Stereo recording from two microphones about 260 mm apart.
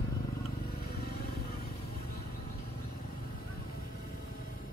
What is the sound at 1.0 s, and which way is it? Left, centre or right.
Vehicle, left.